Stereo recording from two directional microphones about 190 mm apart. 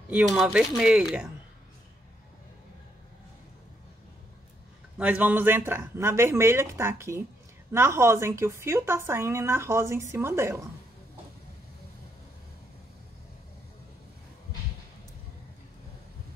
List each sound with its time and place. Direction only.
0.1 s speech: centre (ahead or behind)
4.9 s a woman's voice: 5° right (ahead or behind)